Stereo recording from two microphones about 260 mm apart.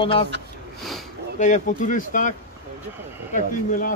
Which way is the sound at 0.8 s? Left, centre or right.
Centre.